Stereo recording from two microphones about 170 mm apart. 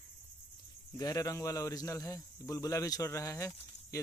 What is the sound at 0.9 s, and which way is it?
A man's voice, 20° left (ahead or behind).